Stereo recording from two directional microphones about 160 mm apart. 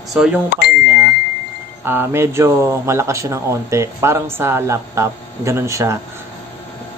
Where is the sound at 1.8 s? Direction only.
15° right (ahead or behind).